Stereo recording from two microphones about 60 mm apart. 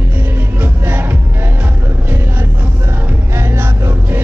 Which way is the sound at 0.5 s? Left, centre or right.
Right.